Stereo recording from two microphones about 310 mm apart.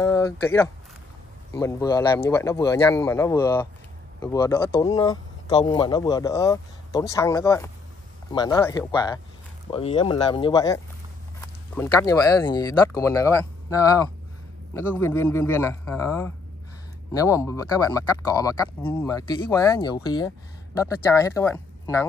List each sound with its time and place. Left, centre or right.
0.0 s speech: centre